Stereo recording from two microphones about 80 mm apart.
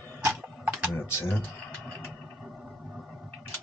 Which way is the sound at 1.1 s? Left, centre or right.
Left.